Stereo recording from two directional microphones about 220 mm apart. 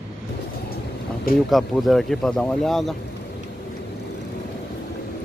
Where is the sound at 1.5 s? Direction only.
Centre (ahead or behind).